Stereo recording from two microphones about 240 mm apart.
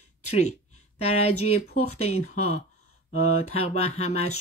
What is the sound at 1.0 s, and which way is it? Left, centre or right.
Speech, left.